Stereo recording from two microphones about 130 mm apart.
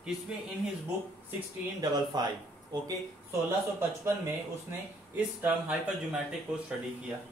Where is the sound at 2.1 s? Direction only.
30° right (ahead or behind).